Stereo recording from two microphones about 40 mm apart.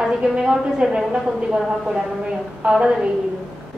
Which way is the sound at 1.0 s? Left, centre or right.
Centre.